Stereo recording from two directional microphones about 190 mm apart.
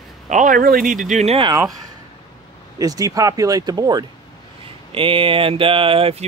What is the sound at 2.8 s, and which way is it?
Speech, 20° right (ahead or behind).